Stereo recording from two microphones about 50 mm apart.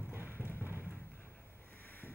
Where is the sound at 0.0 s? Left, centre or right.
Right.